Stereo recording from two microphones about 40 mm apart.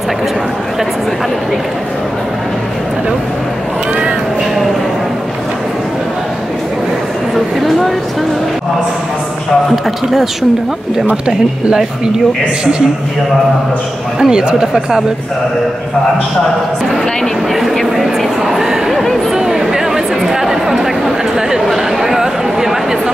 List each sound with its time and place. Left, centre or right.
7.3 s a sound: centre
11.2 s speech: right
14.2 s speech: centre
17.8 s speech: centre
19.3 s chatter: centre